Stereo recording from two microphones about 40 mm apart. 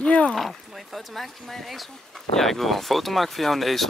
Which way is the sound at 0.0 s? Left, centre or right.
Left.